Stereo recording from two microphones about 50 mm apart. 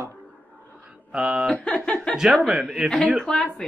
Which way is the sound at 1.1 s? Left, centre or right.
Right.